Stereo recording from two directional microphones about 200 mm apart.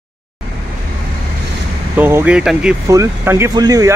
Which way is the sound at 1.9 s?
10° right (ahead or behind).